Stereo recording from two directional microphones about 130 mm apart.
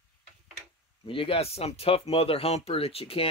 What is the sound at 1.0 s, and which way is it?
Speech, 45° left (ahead or behind).